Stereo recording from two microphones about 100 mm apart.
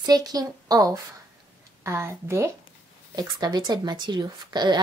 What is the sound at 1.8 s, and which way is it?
Speech, 25° right (ahead or behind).